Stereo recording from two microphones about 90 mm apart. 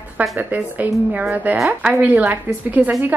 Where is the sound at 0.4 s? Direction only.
20° right (ahead or behind).